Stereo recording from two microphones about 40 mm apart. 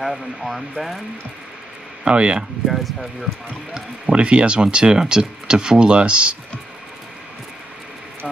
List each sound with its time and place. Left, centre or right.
0.0 s speech: centre
2.0 s speech: right
2.7 s speech: centre
3.7 s speech: right